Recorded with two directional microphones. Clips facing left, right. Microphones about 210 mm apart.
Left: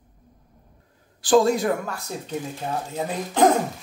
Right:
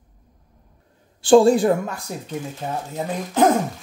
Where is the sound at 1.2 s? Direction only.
30° right (ahead or behind).